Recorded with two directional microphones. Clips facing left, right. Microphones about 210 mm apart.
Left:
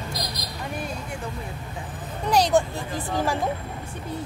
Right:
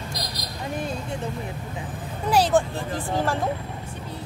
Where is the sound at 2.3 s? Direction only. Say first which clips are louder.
Even; 5° right (ahead or behind).